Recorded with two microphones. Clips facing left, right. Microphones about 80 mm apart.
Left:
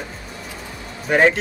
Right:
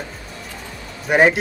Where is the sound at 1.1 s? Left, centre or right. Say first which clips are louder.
Right 2 dB; centre.